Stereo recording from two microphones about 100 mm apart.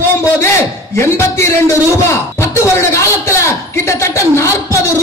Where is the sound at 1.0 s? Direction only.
25° left (ahead or behind).